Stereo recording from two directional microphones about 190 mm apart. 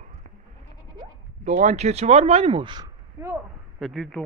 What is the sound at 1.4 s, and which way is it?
Speech, 40° right (ahead or behind).